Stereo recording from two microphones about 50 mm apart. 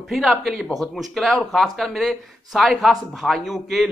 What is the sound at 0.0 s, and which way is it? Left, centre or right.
Speech, centre.